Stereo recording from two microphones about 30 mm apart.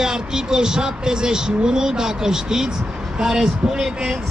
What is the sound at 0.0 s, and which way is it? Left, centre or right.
Speech, right.